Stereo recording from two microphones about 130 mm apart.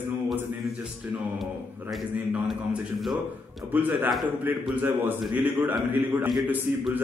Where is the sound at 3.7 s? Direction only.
15° right (ahead or behind).